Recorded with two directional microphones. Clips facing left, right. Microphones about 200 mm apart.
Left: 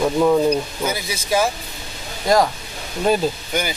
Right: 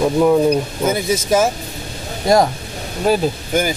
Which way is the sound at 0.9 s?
45° right (ahead or behind).